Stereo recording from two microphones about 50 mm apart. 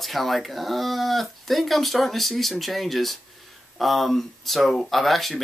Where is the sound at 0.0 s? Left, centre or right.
Centre.